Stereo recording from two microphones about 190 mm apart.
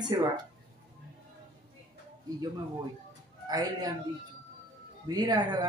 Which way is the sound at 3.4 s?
20° right (ahead or behind).